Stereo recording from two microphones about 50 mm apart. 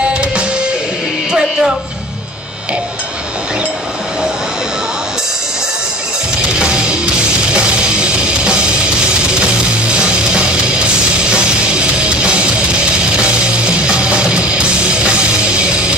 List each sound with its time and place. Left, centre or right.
0.1 s music: right
1.3 s music: centre
6.3 s music: centre
9.8 s music: centre